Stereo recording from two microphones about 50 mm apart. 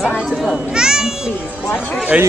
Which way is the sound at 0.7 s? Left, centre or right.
Centre.